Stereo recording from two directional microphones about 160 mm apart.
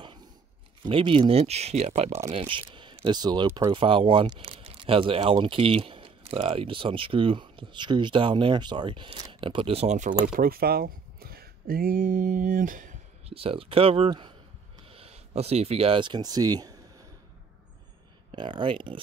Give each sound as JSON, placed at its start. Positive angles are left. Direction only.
{"t": 0.8, "sound": "speech", "side_deg": -35}
{"t": 10.2, "sound": "speech", "side_deg": -65}
{"t": 13.3, "sound": "speech", "side_deg": -35}
{"t": 18.3, "sound": "speech", "side_deg": -30}